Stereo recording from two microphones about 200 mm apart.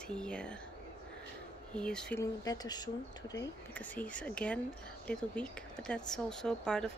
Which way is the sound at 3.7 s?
10° left (ahead or behind).